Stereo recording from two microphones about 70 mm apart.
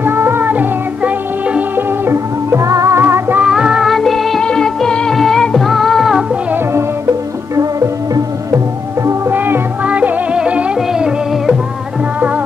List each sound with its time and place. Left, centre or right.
0.0 s music: right
2.0 s music: right
3.0 s music: right
3.4 s music: centre
3.9 s music: centre
7.5 s music: right
9.3 s music: right
9.8 s music: centre